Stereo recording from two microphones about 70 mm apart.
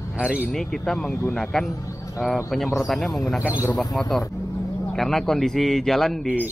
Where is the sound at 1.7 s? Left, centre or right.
Left.